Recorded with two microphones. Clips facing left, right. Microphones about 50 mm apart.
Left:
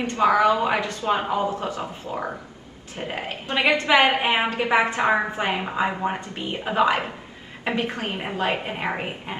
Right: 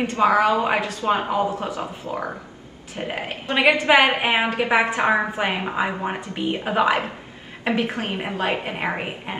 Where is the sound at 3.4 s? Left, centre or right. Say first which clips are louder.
Right 3 dB; right; by 7.0 s centre.